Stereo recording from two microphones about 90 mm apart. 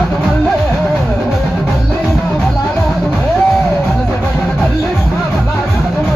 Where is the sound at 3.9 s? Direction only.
15° left (ahead or behind).